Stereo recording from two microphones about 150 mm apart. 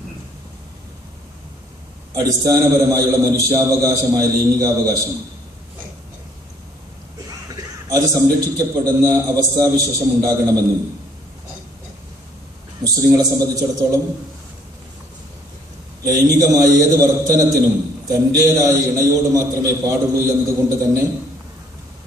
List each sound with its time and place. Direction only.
2.1 s a man's voice: 25° right (ahead or behind)
7.2 s a man's voice: 25° right (ahead or behind)
12.8 s a man's voice: 25° right (ahead or behind)
16.1 s a man's voice: 25° right (ahead or behind)